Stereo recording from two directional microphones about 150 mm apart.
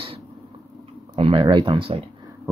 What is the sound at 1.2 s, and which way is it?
Speech, 35° right (ahead or behind).